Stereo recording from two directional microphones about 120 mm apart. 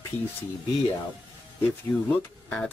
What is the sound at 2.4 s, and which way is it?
Speech, 15° left (ahead or behind).